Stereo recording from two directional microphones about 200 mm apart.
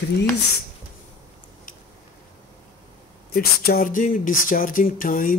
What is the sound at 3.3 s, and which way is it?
Speech, 50° left (ahead or behind).